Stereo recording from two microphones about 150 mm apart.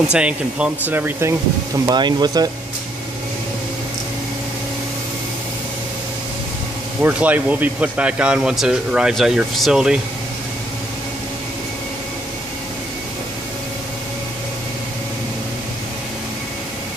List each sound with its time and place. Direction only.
0.1 s speech: 5° right (ahead or behind)
1.9 s speech: 30° right (ahead or behind)
7.0 s speech: 10° right (ahead or behind)